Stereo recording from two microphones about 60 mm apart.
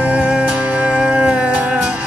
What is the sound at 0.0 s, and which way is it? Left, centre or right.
Music, right.